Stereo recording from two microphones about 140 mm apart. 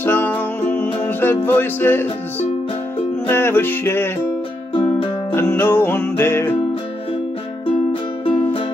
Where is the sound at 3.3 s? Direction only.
15° left (ahead or behind).